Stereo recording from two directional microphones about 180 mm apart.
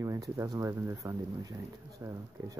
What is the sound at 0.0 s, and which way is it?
Speech, 15° right (ahead or behind).